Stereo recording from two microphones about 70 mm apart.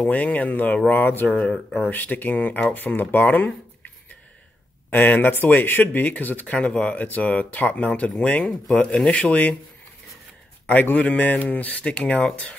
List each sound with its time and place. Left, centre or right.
0.0 s speech: left
1.3 s speech: centre
1.8 s speech: left
4.9 s speech: left
10.7 s speech: left